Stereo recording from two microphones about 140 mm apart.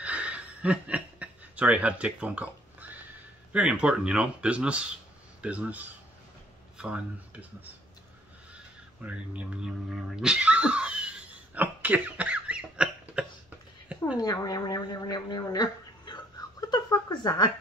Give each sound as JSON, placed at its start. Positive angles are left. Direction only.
{"t": 0.0, "sound": "chuckle", "side_deg": -10}
{"t": 3.5, "sound": "speech", "side_deg": -10}
{"t": 8.5, "sound": "cat", "side_deg": -10}
{"t": 14.1, "sound": "speech", "side_deg": 25}
{"t": 16.4, "sound": "a sound", "side_deg": 30}
{"t": 16.7, "sound": "speech", "side_deg": 30}